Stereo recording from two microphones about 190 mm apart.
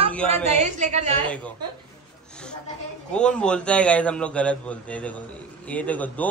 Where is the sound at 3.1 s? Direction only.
5° left (ahead or behind).